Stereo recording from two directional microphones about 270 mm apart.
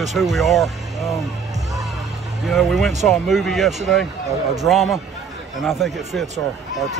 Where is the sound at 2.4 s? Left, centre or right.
Centre.